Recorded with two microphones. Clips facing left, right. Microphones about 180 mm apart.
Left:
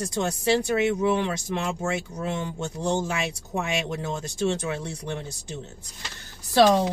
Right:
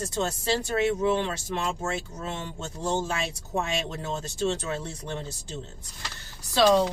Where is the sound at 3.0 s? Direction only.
15° left (ahead or behind).